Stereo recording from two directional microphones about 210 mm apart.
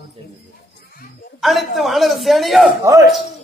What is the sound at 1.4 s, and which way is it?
A man's voice, centre (ahead or behind).